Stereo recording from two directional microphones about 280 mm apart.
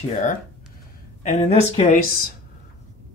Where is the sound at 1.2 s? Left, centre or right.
Left.